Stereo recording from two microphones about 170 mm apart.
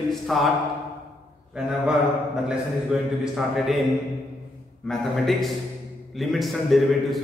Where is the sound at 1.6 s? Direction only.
5° right (ahead or behind).